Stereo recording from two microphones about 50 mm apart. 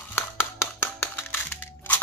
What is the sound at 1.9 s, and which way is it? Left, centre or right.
Crunch, left.